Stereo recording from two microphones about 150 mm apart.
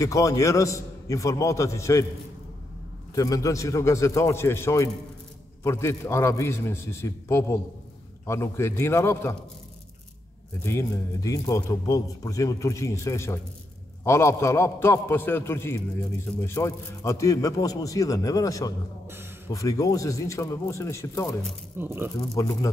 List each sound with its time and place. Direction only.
0.0 s speech: 20° left (ahead or behind)
3.2 s a man's voice: 25° left (ahead or behind)
10.6 s a man's voice: 20° left (ahead or behind)
19.0 s a sound: 15° right (ahead or behind)
19.5 s speech: 20° left (ahead or behind)
21.7 s speech: 15° right (ahead or behind)
22.2 s speech: 20° left (ahead or behind)